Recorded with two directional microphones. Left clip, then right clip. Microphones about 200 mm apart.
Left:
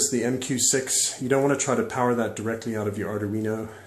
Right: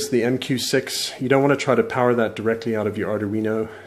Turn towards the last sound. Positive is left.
turn(degrees=-40)  # may be behind; listen again after turning